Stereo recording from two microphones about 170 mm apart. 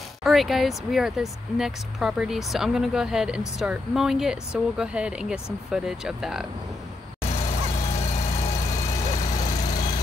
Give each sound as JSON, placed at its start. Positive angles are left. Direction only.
{"t": 0.2, "sound": "speech", "side_deg": 0}
{"t": 7.2, "sound": "vehicle", "side_deg": 35}